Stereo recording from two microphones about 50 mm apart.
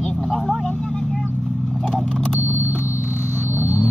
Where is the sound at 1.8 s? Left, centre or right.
Centre.